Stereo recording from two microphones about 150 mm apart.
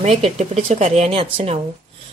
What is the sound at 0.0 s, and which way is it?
Speech, 50° right (ahead or behind).